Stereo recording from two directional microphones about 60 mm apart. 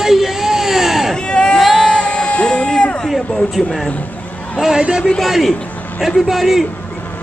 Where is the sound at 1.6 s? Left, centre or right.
Centre.